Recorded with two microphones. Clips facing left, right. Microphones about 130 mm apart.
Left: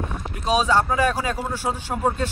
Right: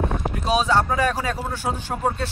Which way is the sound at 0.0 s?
50° right (ahead or behind).